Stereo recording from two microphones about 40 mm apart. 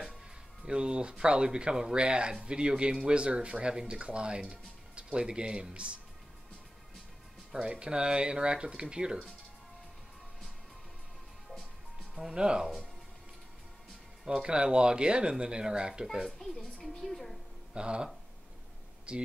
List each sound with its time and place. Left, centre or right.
0.7 s speech: right
7.6 s speech: right
12.2 s speech: centre
14.2 s speech: centre
16.3 s a child's voice: centre
17.7 s speech: right